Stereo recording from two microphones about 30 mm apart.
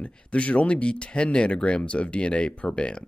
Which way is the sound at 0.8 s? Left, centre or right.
Left.